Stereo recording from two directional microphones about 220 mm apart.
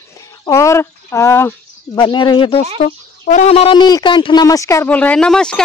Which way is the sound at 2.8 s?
35° left (ahead or behind).